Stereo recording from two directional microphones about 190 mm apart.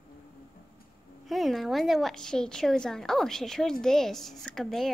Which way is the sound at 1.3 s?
Centre (ahead or behind).